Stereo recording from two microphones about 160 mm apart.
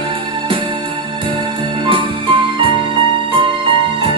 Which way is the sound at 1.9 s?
30° right (ahead or behind).